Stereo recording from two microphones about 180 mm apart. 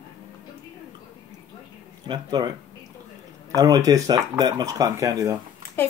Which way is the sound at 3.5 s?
20° right (ahead or behind).